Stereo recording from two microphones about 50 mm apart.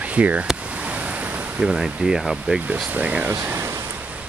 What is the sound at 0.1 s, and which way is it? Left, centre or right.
Speech, right.